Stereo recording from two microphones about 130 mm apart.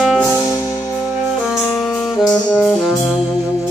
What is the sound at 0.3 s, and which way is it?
Music, 25° left (ahead or behind).